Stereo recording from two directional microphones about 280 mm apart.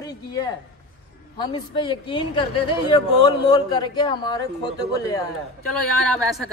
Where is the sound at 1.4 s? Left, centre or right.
Centre.